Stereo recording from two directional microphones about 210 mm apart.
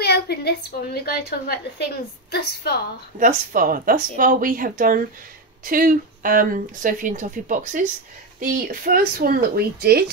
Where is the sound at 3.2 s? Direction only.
40° right (ahead or behind).